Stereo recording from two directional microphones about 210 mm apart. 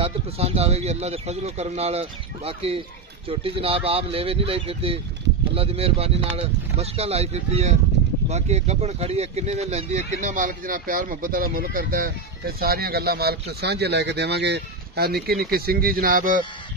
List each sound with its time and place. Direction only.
0.0 s speech: 30° right (ahead or behind)